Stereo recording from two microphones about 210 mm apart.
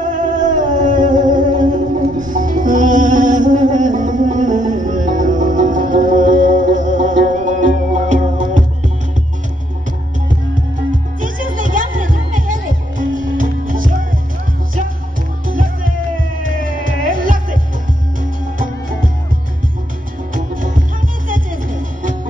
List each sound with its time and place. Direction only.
0.0 s music: 35° right (ahead or behind)
11.1 s music: 40° right (ahead or behind)
15.4 s music: 40° right (ahead or behind)
20.3 s music: 40° right (ahead or behind)